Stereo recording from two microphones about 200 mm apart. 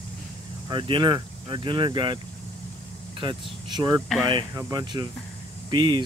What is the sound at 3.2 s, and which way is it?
Speech, 25° right (ahead or behind).